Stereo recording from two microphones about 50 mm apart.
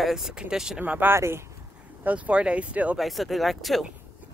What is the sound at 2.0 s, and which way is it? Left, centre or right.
Speech, right.